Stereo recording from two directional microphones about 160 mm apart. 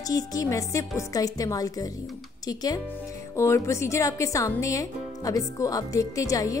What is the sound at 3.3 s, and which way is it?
Music, 20° left (ahead or behind).